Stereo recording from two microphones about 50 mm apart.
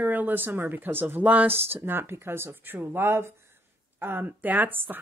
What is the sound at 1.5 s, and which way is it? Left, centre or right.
Speech, right.